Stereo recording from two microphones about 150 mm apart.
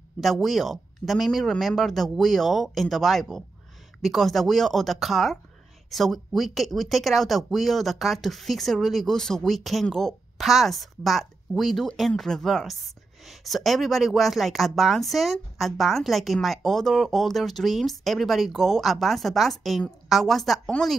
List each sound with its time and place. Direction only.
0.2 s speech: centre (ahead or behind)